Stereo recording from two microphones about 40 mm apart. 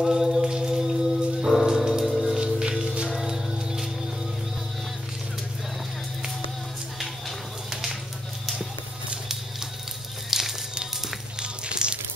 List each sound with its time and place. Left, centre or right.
0.0 s mantra: centre
1.7 s music: centre
10.3 s music: centre
11.3 s a sound: right